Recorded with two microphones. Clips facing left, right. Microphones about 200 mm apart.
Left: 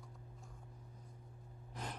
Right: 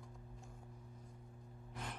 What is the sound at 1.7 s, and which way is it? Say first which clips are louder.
Gasp: left 2 dB; 40° left (ahead or behind).